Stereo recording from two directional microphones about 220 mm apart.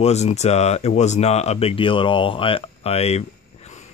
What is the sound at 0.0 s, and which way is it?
Speech, 30° left (ahead or behind).